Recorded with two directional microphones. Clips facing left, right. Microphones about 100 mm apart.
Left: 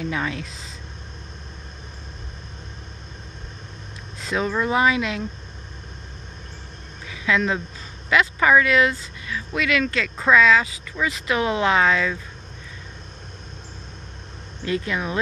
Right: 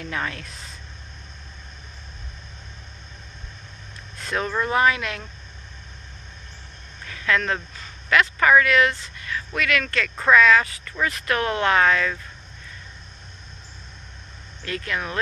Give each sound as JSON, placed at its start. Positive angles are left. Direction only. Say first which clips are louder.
{"t": 0.0, "sound": "speech", "louder": "left 3 dB", "side_deg": 15}
{"t": 4.3, "sound": "speech", "louder": "left 2 dB", "side_deg": 10}
{"t": 7.1, "sound": "speech", "louder": "left 1 dB", "side_deg": 15}
{"t": 14.6, "sound": "speech", "louder": "left 4 dB", "side_deg": 20}